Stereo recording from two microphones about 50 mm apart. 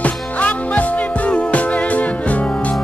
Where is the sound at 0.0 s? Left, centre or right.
Left.